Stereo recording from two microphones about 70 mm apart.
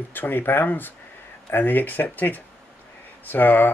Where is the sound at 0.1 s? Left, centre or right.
Left.